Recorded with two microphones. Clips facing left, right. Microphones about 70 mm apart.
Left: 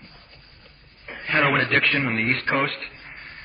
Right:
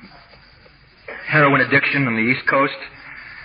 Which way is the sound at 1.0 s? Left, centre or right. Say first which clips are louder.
Right 6 dB; right.